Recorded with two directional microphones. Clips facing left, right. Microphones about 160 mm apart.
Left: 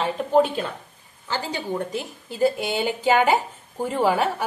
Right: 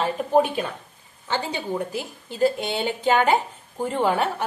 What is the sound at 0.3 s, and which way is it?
Speech, 10° right (ahead or behind).